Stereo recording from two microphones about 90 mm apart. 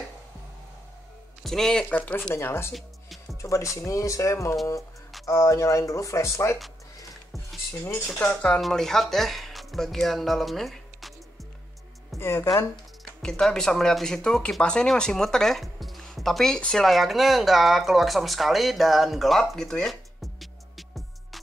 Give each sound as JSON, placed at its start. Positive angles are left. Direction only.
{"t": 1.4, "sound": "speech", "side_deg": 5}
{"t": 2.3, "sound": "speech", "side_deg": 25}
{"t": 2.7, "sound": "music", "side_deg": 0}
{"t": 3.4, "sound": "speech", "side_deg": 35}
{"t": 8.2, "sound": "speech", "side_deg": 15}
{"t": 8.5, "sound": "speech", "side_deg": 5}
{"t": 12.2, "sound": "speech", "side_deg": 30}
{"t": 13.2, "sound": "speech", "side_deg": 5}